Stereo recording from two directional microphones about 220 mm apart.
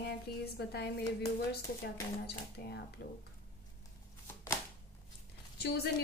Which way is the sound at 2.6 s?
45° left (ahead or behind).